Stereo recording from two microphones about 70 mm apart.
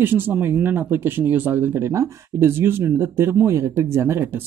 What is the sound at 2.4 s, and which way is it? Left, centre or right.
Speech, right.